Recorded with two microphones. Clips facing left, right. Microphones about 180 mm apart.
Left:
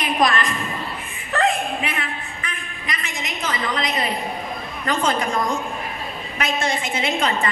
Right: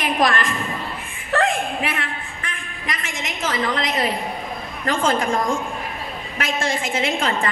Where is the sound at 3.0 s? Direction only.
50° right (ahead or behind).